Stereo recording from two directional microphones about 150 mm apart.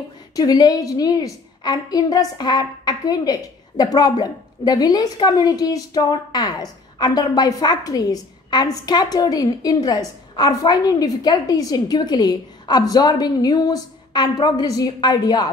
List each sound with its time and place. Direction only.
0.4 s a woman's voice: 25° left (ahead or behind)